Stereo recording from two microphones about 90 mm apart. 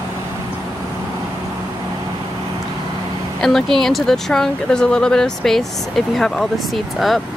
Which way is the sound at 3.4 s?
5° left (ahead or behind).